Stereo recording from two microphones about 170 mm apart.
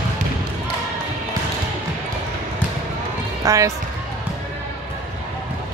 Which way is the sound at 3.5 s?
20° right (ahead or behind).